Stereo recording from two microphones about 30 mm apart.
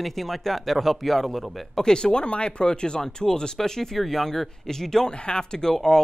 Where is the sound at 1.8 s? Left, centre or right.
Left.